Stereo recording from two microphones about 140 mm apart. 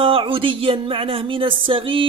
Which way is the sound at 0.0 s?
40° right (ahead or behind).